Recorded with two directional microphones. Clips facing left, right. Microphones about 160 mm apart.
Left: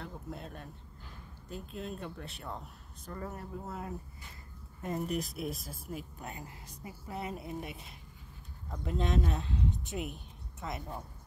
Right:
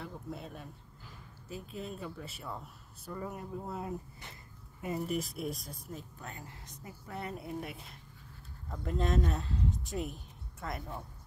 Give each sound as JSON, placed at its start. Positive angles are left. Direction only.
{"t": 0.0, "sound": "speech", "side_deg": 0}
{"t": 4.8, "sound": "speech", "side_deg": 0}
{"t": 10.7, "sound": "speech", "side_deg": 20}